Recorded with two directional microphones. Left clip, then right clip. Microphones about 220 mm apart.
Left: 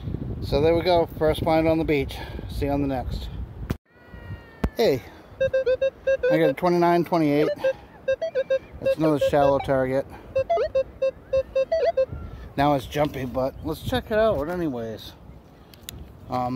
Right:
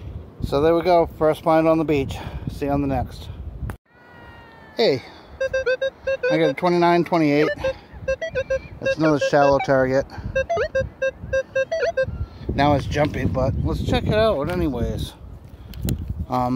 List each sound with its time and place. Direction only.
0.5 s speech: 20° right (ahead or behind)
4.7 s a sound: 5° left (ahead or behind)
5.7 s speech: 5° left (ahead or behind); by 15.1 s 15° right (ahead or behind)
16.3 s speech: 25° right (ahead or behind)